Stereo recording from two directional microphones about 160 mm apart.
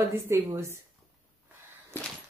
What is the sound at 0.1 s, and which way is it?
Speech, 15° right (ahead or behind).